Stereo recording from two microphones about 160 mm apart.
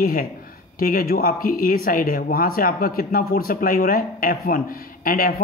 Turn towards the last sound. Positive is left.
turn(degrees=70)  # may be behind; listen again after turning